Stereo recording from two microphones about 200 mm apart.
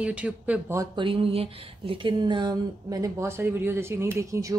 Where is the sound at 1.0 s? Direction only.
25° right (ahead or behind).